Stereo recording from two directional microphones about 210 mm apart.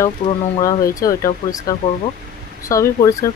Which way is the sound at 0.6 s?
15° left (ahead or behind).